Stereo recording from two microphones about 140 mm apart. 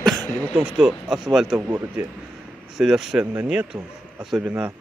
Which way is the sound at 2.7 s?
5° right (ahead or behind).